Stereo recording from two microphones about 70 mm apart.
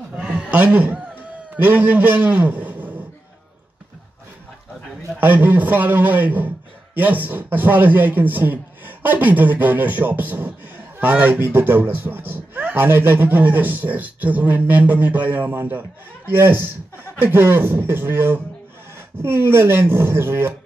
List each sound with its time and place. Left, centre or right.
0.1 s chuckle: centre
1.6 s a man's voice: right
5.2 s speech: right